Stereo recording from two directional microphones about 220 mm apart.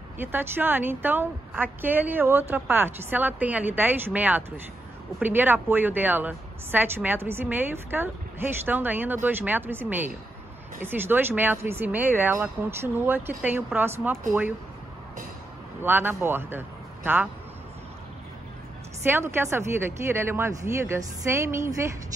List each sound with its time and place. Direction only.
0.2 s a woman's voice: 10° right (ahead or behind)
15.8 s speech: 10° right (ahead or behind)
19.0 s a woman's voice: 10° right (ahead or behind)